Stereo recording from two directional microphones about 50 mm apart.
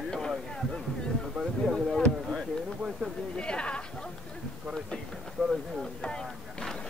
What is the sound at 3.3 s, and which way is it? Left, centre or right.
Chatter, left.